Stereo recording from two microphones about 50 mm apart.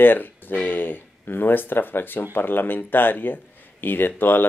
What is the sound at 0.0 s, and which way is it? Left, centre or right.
Speech, left.